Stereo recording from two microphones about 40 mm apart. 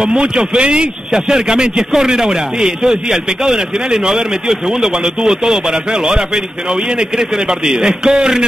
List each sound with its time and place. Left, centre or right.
0.4 s a man's voice: right